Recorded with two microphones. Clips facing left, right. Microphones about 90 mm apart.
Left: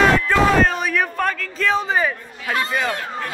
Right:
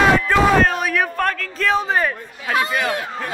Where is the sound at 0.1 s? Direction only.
5° right (ahead or behind).